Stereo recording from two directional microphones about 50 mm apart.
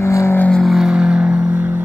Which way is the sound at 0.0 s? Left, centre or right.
Left.